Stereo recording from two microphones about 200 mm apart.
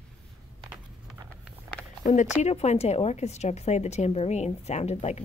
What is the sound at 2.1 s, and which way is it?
A woman's voice, 40° left (ahead or behind).